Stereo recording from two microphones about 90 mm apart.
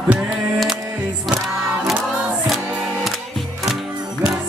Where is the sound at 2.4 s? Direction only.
Centre (ahead or behind).